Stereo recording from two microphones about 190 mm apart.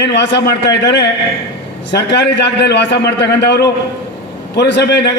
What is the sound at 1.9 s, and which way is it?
A man's voice, 65° left (ahead or behind).